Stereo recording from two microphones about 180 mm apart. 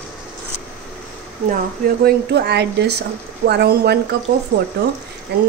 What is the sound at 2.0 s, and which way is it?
A woman's voice, 65° right (ahead or behind).